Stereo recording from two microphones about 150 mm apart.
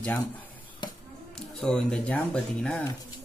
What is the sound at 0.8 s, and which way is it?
Music, 30° left (ahead or behind).